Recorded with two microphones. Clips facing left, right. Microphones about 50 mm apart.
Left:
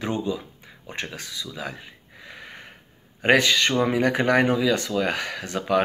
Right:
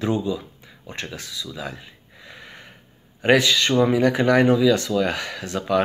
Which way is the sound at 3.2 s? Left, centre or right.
Left.